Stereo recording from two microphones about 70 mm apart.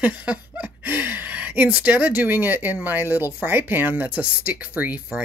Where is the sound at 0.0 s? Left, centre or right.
Right.